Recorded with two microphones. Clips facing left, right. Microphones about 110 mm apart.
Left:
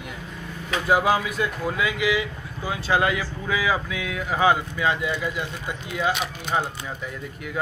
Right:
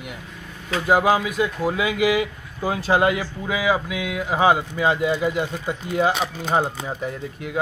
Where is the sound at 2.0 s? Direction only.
40° right (ahead or behind).